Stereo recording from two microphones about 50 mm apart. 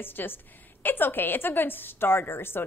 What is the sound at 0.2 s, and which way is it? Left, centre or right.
A woman's voice, left.